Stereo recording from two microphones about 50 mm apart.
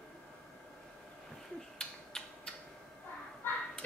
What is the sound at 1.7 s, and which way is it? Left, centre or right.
Mechanisms, centre.